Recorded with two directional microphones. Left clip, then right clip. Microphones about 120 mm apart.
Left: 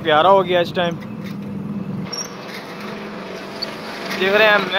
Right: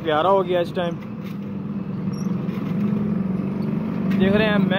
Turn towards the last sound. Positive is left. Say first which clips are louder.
# left 7 dB
turn(degrees=30)  # may be behind; listen again after turning